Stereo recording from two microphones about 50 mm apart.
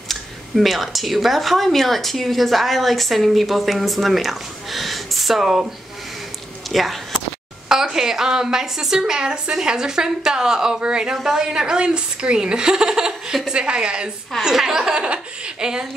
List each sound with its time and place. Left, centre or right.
0.1 s speech: centre
6.7 s speech: centre
7.6 s a woman's voice: centre